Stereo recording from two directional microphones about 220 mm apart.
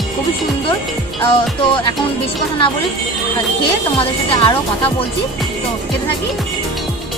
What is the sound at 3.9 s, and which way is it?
Speech, 25° left (ahead or behind).